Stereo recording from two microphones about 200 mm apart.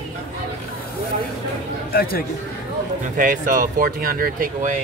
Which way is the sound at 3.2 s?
40° right (ahead or behind).